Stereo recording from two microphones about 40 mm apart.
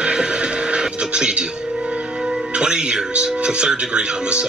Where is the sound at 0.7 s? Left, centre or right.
Right.